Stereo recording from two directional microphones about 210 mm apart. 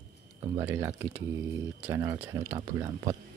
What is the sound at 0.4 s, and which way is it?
Speech, 15° right (ahead or behind).